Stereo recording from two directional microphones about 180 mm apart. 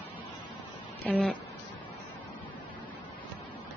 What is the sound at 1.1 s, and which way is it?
Speech, 5° left (ahead or behind).